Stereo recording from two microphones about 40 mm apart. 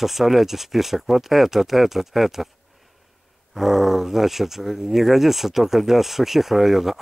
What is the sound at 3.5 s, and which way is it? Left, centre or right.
Speech, centre.